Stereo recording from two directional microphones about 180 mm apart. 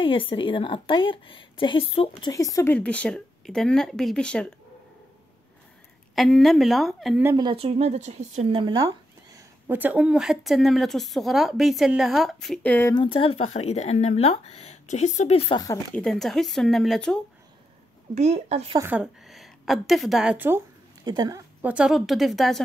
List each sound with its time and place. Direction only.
0.0 s speech: 30° left (ahead or behind)
2.3 s a woman's voice: 20° left (ahead or behind)
6.1 s a woman's voice: centre (ahead or behind)
7.3 s speech: 30° right (ahead or behind)
9.7 s a woman's voice: 10° right (ahead or behind); by 12.9 s 10° left (ahead or behind)
12.9 s speech: 30° left (ahead or behind)
15.6 s speech: 15° left (ahead or behind)
16.0 s a woman's voice: centre (ahead or behind)
18.1 s speech: 35° right (ahead or behind)
18.8 s a woman's voice: 10° right (ahead or behind)
21.0 s speech: 20° right (ahead or behind)
21.6 s a woman's voice: 5° right (ahead or behind)